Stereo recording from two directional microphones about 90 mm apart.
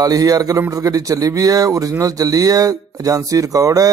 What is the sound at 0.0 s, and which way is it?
Speech, 45° right (ahead or behind).